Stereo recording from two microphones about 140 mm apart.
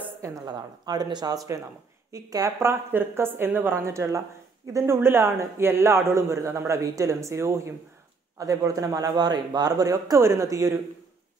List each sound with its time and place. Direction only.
0.2 s a man's voice: 25° right (ahead or behind)